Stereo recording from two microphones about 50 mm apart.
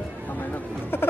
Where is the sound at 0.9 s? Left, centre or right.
Left.